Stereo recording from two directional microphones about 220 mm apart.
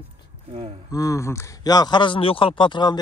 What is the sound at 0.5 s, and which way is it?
Speech, 25° right (ahead or behind).